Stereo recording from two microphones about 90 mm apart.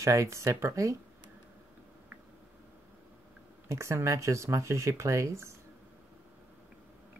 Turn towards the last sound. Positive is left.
turn(degrees=-35)  # may be behind; listen again after turning